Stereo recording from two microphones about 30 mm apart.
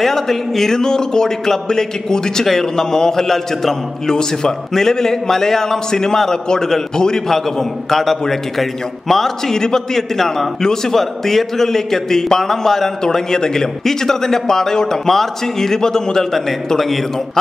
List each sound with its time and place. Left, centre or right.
0.0 s a man's voice: centre
4.1 s a man's voice: left; by 9.3 s centre
9.5 s a man's voice: centre
10.1 s a man's voice: centre